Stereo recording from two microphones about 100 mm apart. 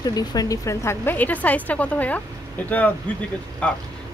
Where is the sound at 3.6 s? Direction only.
15° left (ahead or behind).